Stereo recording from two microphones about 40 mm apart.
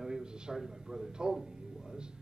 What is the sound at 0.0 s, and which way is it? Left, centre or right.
Music, centre.